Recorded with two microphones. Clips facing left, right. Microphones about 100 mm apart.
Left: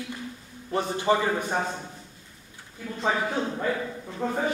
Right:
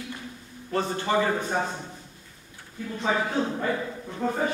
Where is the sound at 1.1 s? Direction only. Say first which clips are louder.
Left 2 dB; 15° left (ahead or behind).